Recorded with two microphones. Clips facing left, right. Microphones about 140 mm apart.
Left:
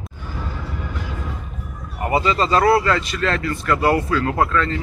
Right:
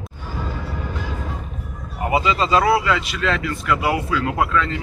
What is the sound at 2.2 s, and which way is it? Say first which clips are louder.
Speech: left 2 dB; 40° left (ahead or behind).